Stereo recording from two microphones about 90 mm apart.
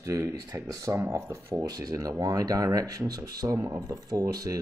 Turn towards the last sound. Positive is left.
turn(degrees=-40)  # may be behind; listen again after turning